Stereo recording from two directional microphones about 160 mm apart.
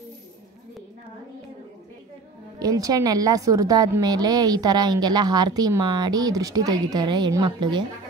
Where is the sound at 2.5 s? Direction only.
25° right (ahead or behind).